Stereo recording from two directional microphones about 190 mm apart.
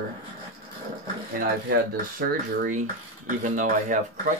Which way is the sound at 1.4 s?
55° right (ahead or behind).